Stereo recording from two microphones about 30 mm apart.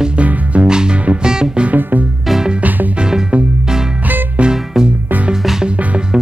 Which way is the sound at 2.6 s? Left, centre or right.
Right.